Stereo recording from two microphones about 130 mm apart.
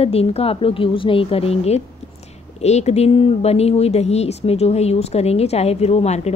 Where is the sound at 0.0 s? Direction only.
50° left (ahead or behind).